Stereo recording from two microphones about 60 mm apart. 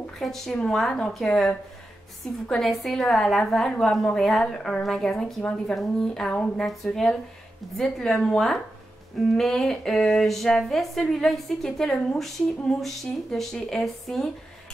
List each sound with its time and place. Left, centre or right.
0.2 s a woman's voice: centre